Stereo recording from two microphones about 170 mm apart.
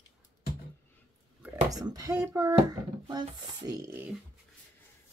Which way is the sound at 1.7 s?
20° right (ahead or behind).